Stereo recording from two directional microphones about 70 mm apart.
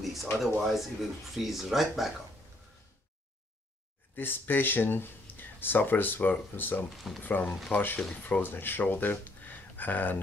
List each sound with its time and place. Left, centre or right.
0.0 s speech: centre
4.1 s speech: left
8.0 s speech: centre